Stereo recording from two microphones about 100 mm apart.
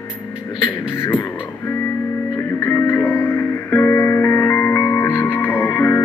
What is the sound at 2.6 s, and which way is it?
Music, 30° left (ahead or behind).